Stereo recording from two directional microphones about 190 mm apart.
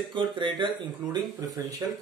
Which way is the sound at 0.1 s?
25° right (ahead or behind).